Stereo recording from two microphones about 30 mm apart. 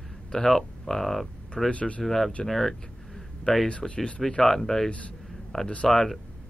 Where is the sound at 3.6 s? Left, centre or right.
Left.